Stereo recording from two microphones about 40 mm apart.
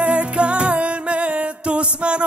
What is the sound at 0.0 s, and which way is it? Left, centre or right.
Music, right.